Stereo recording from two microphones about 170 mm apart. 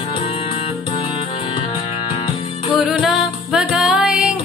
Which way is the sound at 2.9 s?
Centre (ahead or behind).